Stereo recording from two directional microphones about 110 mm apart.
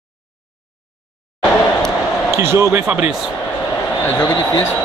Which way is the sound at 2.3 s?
25° right (ahead or behind).